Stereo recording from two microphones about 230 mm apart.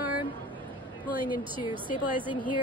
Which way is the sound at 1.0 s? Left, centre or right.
Centre.